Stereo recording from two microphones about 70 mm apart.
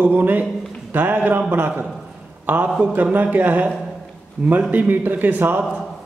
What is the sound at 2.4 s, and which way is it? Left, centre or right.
A man's voice, right.